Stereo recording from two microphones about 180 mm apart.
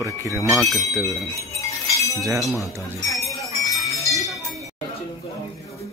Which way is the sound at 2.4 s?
Centre (ahead or behind).